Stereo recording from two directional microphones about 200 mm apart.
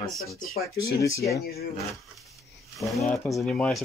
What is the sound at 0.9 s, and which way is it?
Speech, 15° left (ahead or behind).